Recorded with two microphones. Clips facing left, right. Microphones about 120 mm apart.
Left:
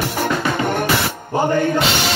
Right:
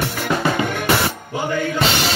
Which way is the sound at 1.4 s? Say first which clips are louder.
Left 5 dB; 45° left (ahead or behind).